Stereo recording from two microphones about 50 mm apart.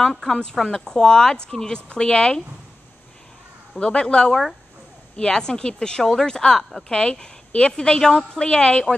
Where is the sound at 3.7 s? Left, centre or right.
Left.